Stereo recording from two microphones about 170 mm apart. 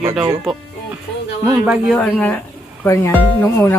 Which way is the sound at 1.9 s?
10° left (ahead or behind).